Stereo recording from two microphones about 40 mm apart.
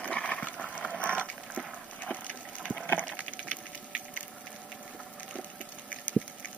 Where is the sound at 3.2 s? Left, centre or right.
Left.